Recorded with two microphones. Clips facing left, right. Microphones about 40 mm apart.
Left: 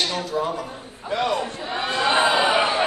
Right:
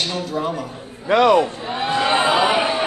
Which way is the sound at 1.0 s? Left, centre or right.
Right.